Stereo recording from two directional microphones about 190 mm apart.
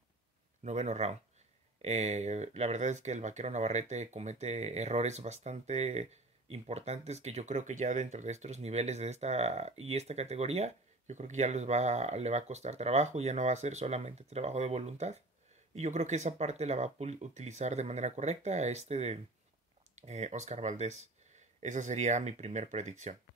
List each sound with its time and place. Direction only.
0.7 s speech: 35° right (ahead or behind)